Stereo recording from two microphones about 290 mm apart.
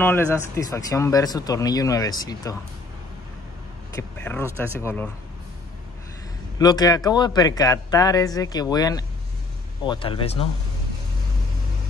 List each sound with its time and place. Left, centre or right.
0.0 s speech: centre
3.9 s speech: centre
6.6 s speech: centre